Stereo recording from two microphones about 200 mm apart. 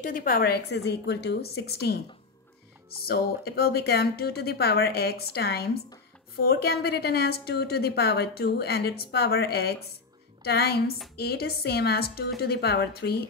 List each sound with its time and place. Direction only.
0.0 s a woman's voice: 45° left (ahead or behind)
3.1 s a woman's voice: 50° left (ahead or behind)